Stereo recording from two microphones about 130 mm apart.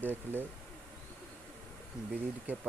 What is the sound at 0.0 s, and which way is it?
Speech, 15° right (ahead or behind).